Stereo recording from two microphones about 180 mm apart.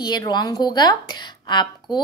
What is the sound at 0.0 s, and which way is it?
A woman's voice, 25° left (ahead or behind).